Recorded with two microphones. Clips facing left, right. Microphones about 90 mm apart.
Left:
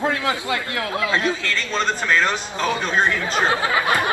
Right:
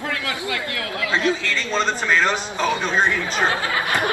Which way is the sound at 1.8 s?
10° right (ahead or behind).